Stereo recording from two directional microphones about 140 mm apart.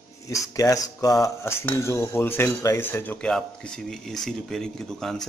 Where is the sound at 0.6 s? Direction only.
25° left (ahead or behind).